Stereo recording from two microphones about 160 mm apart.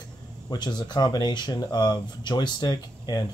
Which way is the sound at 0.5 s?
25° left (ahead or behind).